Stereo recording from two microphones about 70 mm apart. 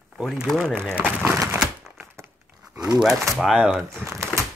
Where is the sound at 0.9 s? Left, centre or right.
Right.